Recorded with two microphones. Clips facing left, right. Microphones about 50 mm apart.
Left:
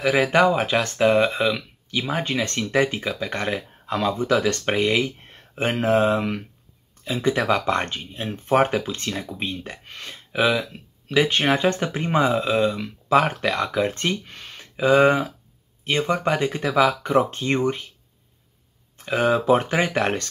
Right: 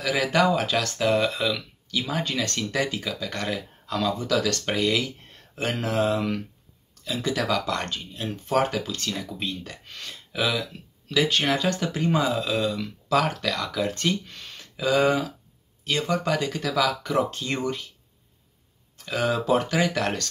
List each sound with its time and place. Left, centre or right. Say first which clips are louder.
0.0 s speech: left 4 dB; left
18.9 s speech: left 5 dB; left